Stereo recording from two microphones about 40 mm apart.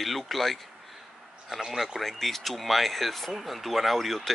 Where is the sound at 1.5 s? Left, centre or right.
Centre.